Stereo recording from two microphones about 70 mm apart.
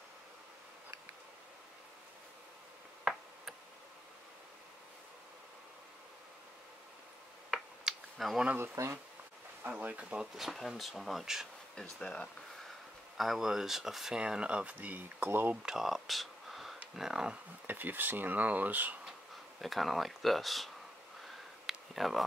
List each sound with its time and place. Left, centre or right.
7.5 s a sound: centre
8.7 s speech: right
9.7 s speech: right
10.3 s speech: centre
11.7 s speech: centre
13.2 s speech: centre; by 15.5 s right
15.5 s speech: centre
17.6 s speech: right
19.6 s speech: centre
21.6 s a sound: centre